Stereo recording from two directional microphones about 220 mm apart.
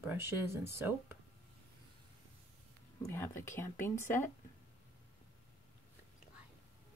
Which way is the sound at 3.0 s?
10° left (ahead or behind).